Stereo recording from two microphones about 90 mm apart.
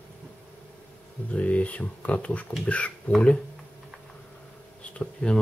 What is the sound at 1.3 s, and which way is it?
Speech, 15° left (ahead or behind).